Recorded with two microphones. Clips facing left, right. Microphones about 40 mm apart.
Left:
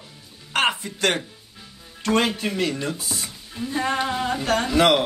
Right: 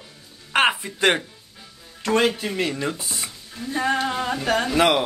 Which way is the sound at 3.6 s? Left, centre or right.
Centre.